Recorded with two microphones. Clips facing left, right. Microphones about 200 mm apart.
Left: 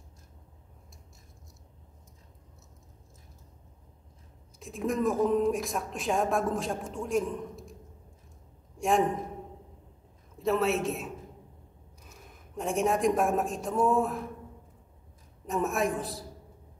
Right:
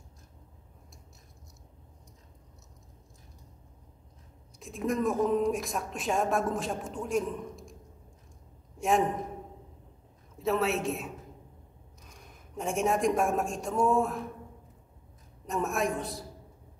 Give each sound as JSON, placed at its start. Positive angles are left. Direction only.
{"t": 4.6, "sound": "a woman's voice", "side_deg": 0}
{"t": 8.7, "sound": "a sound", "side_deg": 0}
{"t": 10.4, "sound": "a woman's voice", "side_deg": 0}
{"t": 12.1, "sound": "a woman's voice", "side_deg": 0}
{"t": 15.4, "sound": "a woman's voice", "side_deg": 0}